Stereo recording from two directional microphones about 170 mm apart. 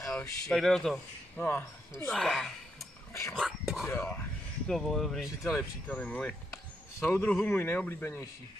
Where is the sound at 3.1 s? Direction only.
15° left (ahead or behind).